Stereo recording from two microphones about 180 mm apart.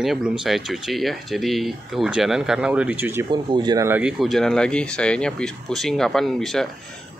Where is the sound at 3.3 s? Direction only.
25° right (ahead or behind).